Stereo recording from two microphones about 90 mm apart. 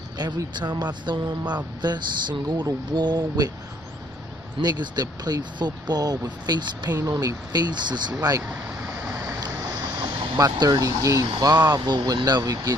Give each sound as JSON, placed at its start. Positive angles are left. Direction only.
{"t": 0.2, "sound": "speech", "side_deg": -50}
{"t": 4.6, "sound": "speech", "side_deg": -50}
{"t": 8.2, "sound": "speech", "side_deg": -40}
{"t": 9.0, "sound": "boat", "side_deg": -35}
{"t": 11.2, "sound": "speech", "side_deg": -50}